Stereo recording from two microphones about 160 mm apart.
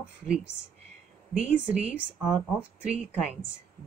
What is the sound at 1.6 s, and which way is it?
Speech, 5° right (ahead or behind).